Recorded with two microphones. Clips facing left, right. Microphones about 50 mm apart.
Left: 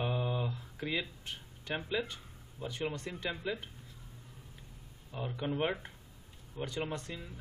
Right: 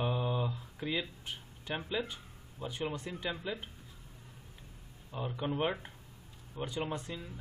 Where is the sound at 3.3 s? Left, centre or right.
Centre.